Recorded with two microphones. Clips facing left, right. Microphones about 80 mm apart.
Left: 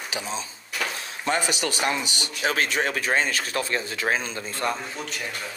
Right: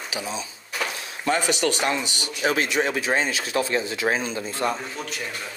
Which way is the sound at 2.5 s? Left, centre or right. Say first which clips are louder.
Right 2 dB; left.